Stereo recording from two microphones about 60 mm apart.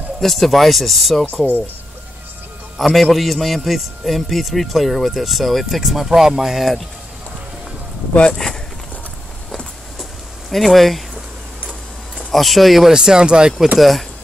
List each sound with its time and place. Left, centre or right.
0.2 s a man's voice: centre
1.3 s speech: left
2.8 s a man's voice: centre
8.1 s speech: centre
10.5 s a man's voice: centre
12.2 s a man's voice: centre
13.7 s a man's voice: centre